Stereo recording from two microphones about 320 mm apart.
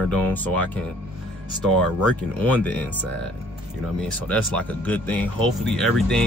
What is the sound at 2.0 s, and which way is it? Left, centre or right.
Speech, centre.